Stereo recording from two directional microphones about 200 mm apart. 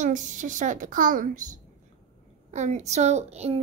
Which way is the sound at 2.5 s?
35° right (ahead or behind).